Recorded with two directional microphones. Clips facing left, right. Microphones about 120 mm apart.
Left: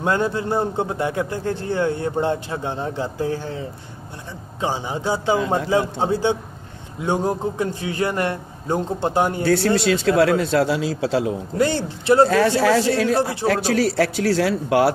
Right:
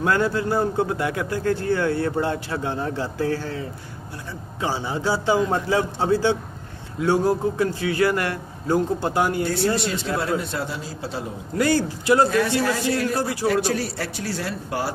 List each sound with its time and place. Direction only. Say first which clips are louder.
0.0 s a man's voice: even; 25° left (ahead or behind)
9.4 s a man's voice: left 4 dB; 90° left
11.5 s a man's voice: right 2 dB; 25° left (ahead or behind)
12.3 s a man's voice: left 5 dB; 90° left